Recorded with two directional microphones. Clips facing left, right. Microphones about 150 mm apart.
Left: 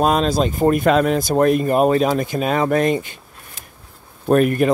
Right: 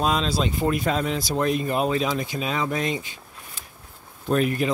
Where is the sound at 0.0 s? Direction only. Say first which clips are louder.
Left 7 dB; 50° left (ahead or behind).